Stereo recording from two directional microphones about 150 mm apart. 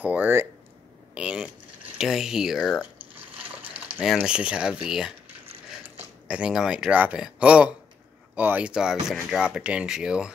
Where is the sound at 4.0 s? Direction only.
5° right (ahead or behind).